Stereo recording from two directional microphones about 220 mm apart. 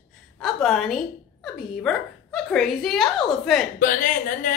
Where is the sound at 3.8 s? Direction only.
35° left (ahead or behind).